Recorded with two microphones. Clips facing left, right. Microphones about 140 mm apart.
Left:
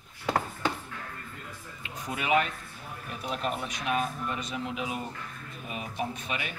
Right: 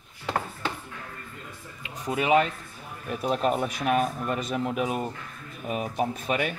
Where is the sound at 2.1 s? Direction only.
30° right (ahead or behind).